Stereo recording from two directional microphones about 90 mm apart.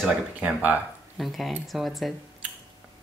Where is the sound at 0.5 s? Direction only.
15° right (ahead or behind).